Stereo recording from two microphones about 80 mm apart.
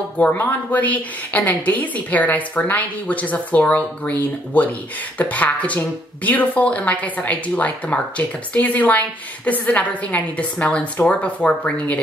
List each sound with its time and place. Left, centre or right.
0.2 s speech: left